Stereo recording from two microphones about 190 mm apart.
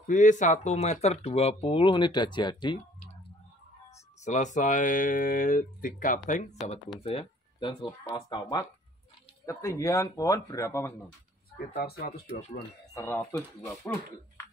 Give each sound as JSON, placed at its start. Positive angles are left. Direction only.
{"t": 0.0, "sound": "speech", "side_deg": 40}
{"t": 4.2, "sound": "speech", "side_deg": 40}
{"t": 11.8, "sound": "speech", "side_deg": 55}
{"t": 12.9, "sound": "speech", "side_deg": 15}